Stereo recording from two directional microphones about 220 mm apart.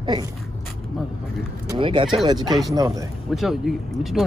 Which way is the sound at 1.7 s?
25° right (ahead or behind).